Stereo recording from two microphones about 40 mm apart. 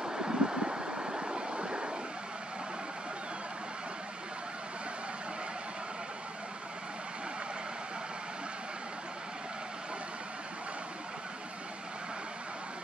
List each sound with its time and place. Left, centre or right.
0.0 s vehicle: centre